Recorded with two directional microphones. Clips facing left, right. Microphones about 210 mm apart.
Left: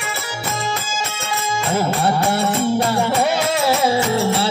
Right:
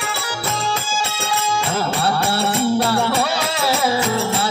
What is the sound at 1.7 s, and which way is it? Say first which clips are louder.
Music: left 5 dB; 20° left (ahead or behind).